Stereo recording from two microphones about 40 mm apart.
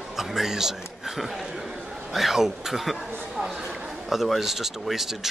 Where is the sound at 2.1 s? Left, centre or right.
Centre.